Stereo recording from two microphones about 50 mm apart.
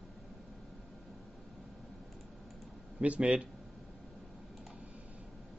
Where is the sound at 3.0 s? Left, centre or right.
Right.